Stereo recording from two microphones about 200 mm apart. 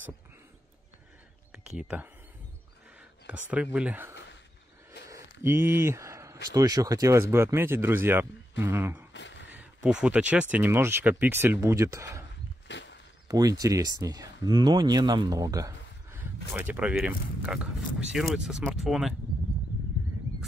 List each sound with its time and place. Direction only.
1.5 s speech: 5° right (ahead or behind)
3.3 s speech: 5° right (ahead or behind)
5.0 s a sound: 15° right (ahead or behind)
6.5 s speech: 20° right (ahead or behind)
9.1 s a sound: 60° left (ahead or behind)
9.5 s speech: 5° right (ahead or behind)
12.6 s walk: 60° left (ahead or behind)
13.3 s speech: 15° right (ahead or behind); by 19.1 s centre (ahead or behind)